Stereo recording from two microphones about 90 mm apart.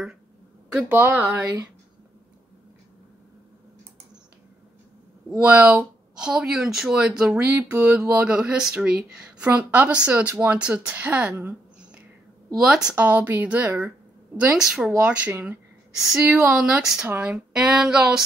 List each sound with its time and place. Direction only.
0.8 s speech: 20° right (ahead or behind)
5.4 s a woman's voice: 15° right (ahead or behind)
9.4 s a woman's voice: 20° right (ahead or behind)
12.5 s a woman's voice: 5° right (ahead or behind)
12.9 s speech: 20° right (ahead or behind)
14.3 s a woman's voice: 10° right (ahead or behind)